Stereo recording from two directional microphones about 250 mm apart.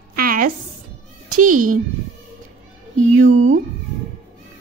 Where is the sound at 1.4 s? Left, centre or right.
Right.